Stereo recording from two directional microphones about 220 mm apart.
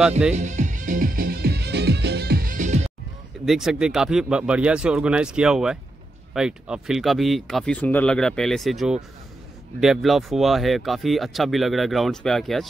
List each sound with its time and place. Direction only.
0.3 s music: 35° right (ahead or behind)
3.4 s speech: centre (ahead or behind)